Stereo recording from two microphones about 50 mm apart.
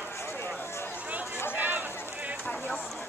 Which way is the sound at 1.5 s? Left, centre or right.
Right.